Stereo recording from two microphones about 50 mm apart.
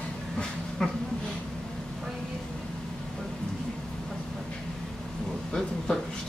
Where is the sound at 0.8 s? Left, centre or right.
Centre.